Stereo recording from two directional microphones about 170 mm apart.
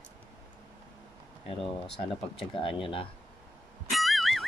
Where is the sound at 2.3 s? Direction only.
30° left (ahead or behind).